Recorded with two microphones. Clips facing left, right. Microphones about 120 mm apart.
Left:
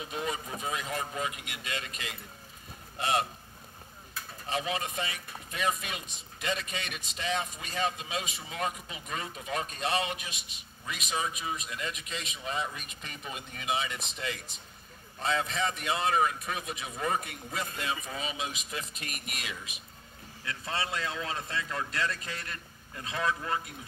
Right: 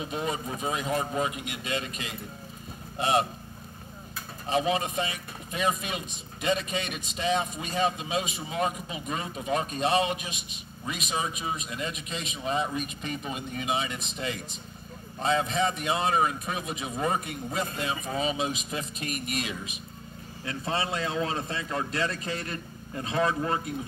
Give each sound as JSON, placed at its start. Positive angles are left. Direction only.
{"t": 0.0, "sound": "speech", "side_deg": -25}
{"t": 4.5, "sound": "speech", "side_deg": -25}